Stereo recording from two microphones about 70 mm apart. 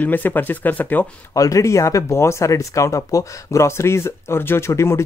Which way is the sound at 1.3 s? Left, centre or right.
Left.